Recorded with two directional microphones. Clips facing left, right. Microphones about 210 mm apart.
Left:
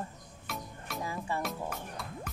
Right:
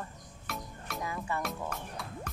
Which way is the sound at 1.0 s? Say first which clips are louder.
Even; 30° left (ahead or behind).